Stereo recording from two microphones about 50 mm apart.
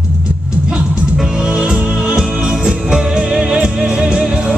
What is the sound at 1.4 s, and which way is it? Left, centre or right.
Music, centre.